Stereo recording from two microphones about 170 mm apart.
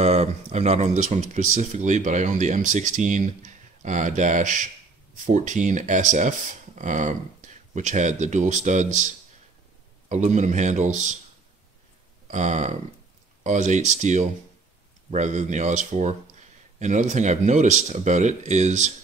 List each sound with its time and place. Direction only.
0.0 s speech: 40° right (ahead or behind)
12.3 s speech: 45° right (ahead or behind)